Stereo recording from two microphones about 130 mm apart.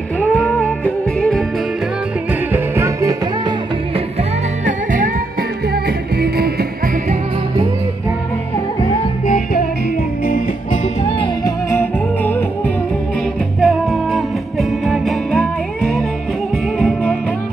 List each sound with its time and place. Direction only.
0.2 s music: 10° left (ahead or behind)
2.5 s music: 25° right (ahead or behind)
4.6 s music: 90° right
10.2 s music: 90° left
13.6 s music: centre (ahead or behind)